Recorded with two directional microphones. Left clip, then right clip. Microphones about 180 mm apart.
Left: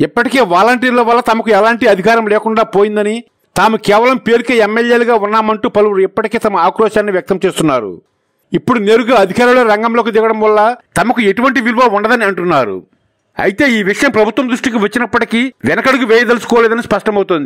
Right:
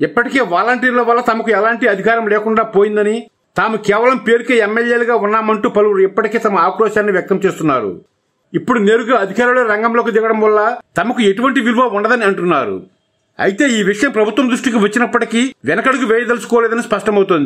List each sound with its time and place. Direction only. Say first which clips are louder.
0.0 s a man's voice: left 3 dB; 55° left (ahead or behind)
11.1 s speech: left 2 dB; 45° left (ahead or behind)